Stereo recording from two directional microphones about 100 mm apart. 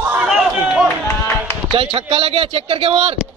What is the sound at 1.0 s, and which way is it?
Clapping, 25° left (ahead or behind).